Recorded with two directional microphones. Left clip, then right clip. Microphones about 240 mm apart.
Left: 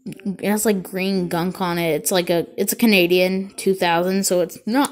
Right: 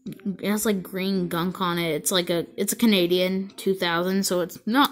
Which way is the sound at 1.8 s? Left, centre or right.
Left.